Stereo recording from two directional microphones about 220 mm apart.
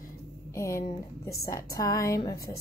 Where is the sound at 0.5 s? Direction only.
15° left (ahead or behind).